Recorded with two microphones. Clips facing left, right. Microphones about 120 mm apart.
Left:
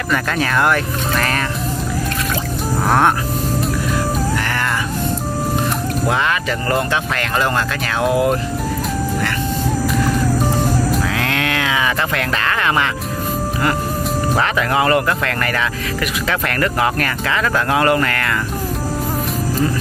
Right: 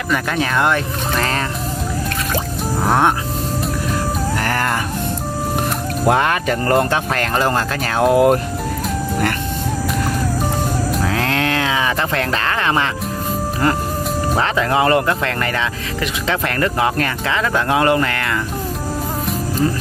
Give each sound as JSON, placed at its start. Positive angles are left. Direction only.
{"t": 0.1, "sound": "speech", "side_deg": -20}
{"t": 6.0, "sound": "speech", "side_deg": -50}
{"t": 11.0, "sound": "a sound", "side_deg": -35}
{"t": 14.4, "sound": "speech", "side_deg": -30}